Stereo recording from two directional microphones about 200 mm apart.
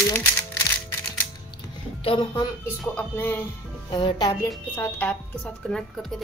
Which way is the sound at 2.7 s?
5° left (ahead or behind).